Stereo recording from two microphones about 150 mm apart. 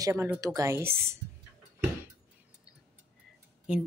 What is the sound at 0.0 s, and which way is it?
Speech, 15° right (ahead or behind).